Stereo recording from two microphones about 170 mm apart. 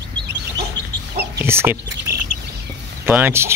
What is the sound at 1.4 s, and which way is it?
Chicken, 15° right (ahead or behind).